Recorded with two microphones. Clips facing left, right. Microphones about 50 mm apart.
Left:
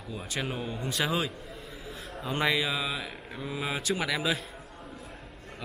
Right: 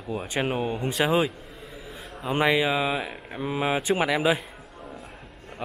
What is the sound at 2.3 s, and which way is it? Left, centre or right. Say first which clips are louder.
Speech: right 6 dB; right.